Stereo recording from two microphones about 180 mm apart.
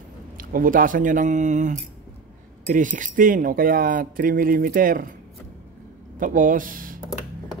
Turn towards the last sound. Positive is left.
turn(degrees=-50)  # may be behind; listen again after turning